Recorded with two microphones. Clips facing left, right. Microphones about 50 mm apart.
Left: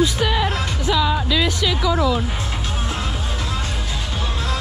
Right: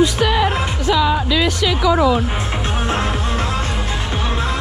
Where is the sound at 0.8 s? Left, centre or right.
Right.